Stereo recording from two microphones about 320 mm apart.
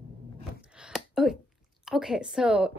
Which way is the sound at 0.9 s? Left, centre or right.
Centre.